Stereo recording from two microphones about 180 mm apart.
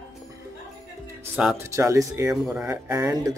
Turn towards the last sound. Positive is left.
turn(degrees=-15)  # may be behind; listen again after turning